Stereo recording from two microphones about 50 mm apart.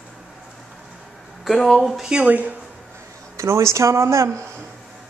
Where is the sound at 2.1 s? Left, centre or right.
Right.